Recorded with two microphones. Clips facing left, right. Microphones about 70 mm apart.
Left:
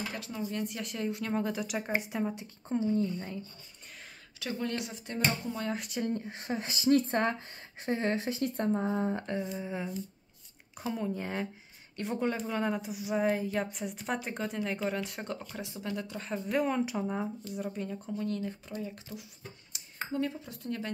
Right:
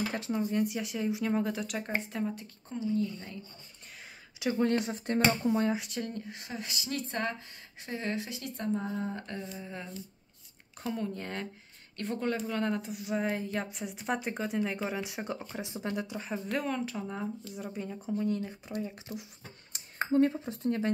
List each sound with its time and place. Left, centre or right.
0.1 s speech: right
0.5 s a woman's voice: centre
2.7 s speech: left
4.6 s speech: right
5.8 s a woman's voice: centre
6.0 s speech: left
8.8 s a woman's voice: left; by 15.4 s centre
15.4 s speech: right
16.0 s speech: centre
16.4 s speech: centre
17.5 s a woman's voice: centre
19.7 s speech: right